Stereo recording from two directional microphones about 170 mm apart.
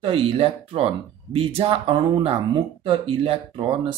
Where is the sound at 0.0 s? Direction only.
35° right (ahead or behind).